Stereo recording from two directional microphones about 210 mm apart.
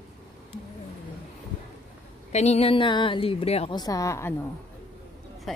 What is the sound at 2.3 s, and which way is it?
A woman's voice, 30° left (ahead or behind).